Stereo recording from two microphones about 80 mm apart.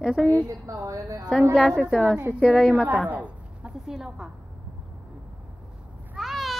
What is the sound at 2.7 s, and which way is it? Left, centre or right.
A woman's voice, centre.